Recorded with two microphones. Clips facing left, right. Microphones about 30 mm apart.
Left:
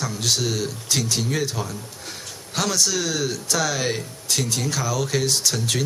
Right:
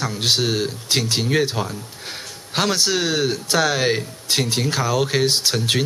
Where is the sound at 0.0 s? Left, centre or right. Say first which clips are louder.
Right 4 dB; right.